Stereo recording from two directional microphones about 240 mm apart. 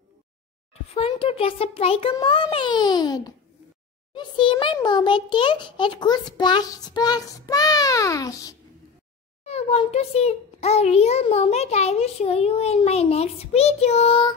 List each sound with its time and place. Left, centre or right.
0.9 s a child's voice: left
9.4 s a child's voice: left